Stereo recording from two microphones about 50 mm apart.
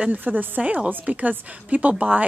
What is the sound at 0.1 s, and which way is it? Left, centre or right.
A woman's voice, right.